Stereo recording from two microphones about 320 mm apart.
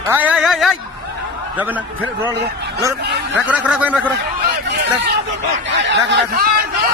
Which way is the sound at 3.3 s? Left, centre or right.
Centre.